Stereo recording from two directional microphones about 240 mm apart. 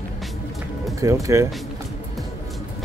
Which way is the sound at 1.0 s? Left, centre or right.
Centre.